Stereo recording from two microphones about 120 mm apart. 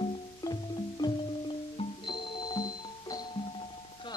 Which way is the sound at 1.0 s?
30° left (ahead or behind).